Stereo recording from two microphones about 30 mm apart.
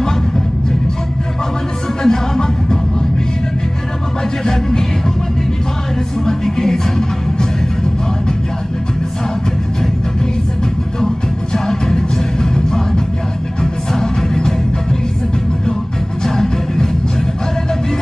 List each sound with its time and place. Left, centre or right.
2.0 s music: centre
4.5 s music: centre
6.2 s music: centre
11.5 s music: centre
16.3 s music: centre